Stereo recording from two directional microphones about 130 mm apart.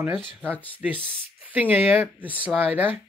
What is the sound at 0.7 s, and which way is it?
Speech, 10° right (ahead or behind).